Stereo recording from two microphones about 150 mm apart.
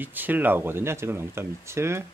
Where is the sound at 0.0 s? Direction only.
10° right (ahead or behind).